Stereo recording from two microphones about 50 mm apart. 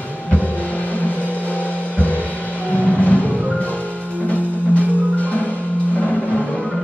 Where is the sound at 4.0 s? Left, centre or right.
Left.